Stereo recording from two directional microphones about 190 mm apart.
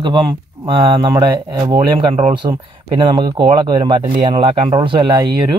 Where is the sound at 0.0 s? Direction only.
25° right (ahead or behind).